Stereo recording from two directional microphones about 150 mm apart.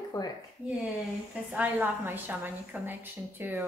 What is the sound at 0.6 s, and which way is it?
Speech, 10° right (ahead or behind).